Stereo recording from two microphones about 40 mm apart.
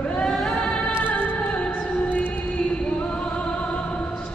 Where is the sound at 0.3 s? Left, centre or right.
Centre.